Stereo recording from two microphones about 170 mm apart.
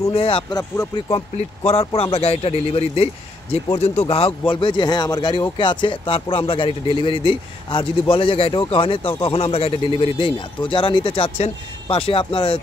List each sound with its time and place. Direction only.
0.1 s speech: 35° left (ahead or behind)
1.6 s speech: 35° left (ahead or behind)